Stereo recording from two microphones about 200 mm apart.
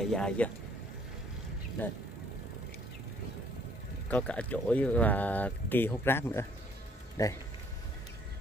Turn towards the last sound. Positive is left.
turn(degrees=15)  # may be behind; listen again after turning